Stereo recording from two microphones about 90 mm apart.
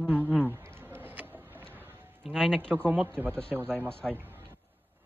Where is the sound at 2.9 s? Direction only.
20° right (ahead or behind).